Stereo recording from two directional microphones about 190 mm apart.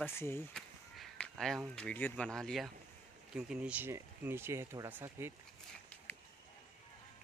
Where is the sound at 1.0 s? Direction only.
Centre (ahead or behind).